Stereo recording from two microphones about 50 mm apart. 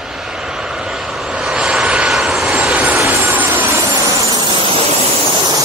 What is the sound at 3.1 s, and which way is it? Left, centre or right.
Vehicle, right.